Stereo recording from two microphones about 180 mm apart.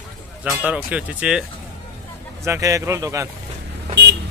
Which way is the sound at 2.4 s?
15° right (ahead or behind).